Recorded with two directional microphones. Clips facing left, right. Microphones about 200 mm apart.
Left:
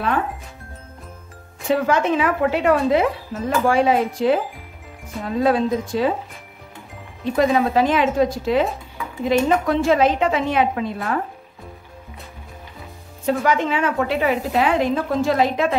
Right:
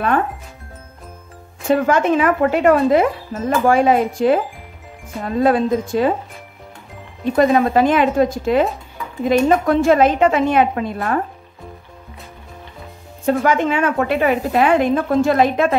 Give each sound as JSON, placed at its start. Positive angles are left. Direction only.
{"t": 1.7, "sound": "a woman's voice", "side_deg": -50}
{"t": 7.3, "sound": "a woman's voice", "side_deg": -50}
{"t": 13.2, "sound": "a woman's voice", "side_deg": -50}